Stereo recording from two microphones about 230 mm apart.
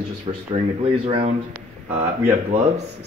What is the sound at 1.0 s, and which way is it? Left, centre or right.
Speech, right.